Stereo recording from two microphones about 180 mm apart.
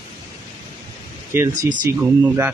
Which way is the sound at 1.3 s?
15° right (ahead or behind).